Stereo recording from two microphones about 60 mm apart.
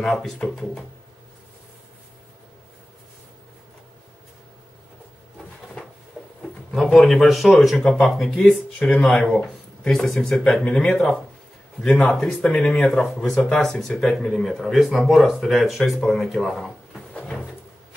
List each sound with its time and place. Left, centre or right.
0.0 s speech: centre
6.2 s a sound: centre
6.7 s speech: centre
7.7 s speech: centre